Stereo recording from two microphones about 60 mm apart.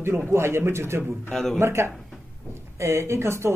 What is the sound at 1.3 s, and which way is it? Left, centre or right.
Speech, centre.